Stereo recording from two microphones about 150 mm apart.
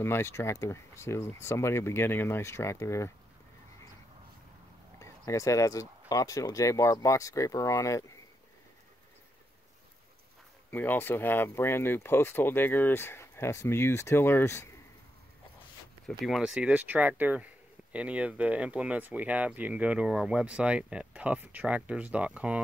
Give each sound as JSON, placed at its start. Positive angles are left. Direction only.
{"t": 0.0, "sound": "speech", "side_deg": 15}
{"t": 4.9, "sound": "speech", "side_deg": 20}
{"t": 10.7, "sound": "speech", "side_deg": 15}
{"t": 16.1, "sound": "speech", "side_deg": 0}